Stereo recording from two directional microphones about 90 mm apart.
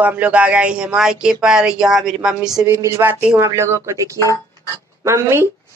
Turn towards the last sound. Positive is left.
turn(degrees=-30)  # may be behind; listen again after turning